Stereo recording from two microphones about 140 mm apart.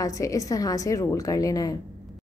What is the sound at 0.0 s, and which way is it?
A woman's voice, 25° left (ahead or behind).